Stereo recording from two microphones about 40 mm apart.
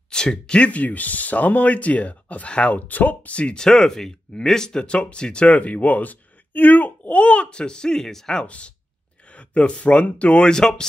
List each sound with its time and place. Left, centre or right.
0.1 s speech: left
0.7 s speech: left
3.5 s speech: centre
5.5 s speech: left; by 8.5 s centre
8.5 s speech: left
10.5 s speech: centre